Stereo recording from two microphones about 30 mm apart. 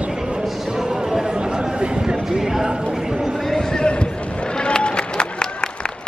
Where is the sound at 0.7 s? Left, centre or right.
Right.